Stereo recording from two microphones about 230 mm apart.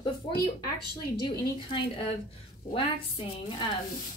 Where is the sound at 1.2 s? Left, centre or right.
Left.